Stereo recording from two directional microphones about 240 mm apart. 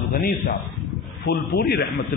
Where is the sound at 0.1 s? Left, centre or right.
Left.